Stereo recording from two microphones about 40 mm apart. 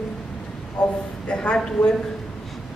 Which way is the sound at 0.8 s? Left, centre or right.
Left.